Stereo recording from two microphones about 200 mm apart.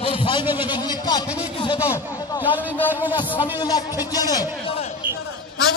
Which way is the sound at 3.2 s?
20° left (ahead or behind).